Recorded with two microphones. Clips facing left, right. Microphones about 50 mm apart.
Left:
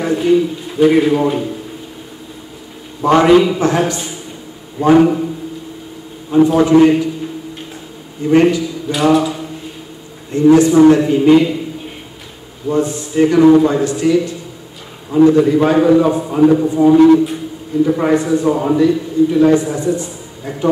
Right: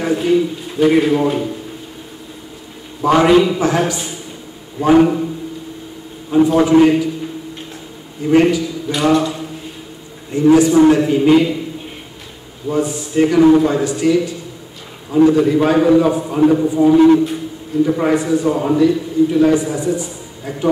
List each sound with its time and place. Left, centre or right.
0.0 s a man's voice: centre
3.0 s a man's voice: centre
6.3 s a man's voice: centre
8.3 s a man's voice: centre
12.6 s a man's voice: centre
15.3 s a man's voice: centre
19.5 s a man's voice: centre